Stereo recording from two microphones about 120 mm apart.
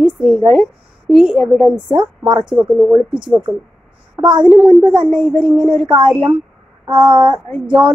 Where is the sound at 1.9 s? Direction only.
40° right (ahead or behind).